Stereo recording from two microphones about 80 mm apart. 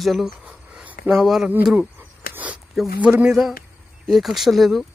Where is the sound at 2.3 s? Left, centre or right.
Centre.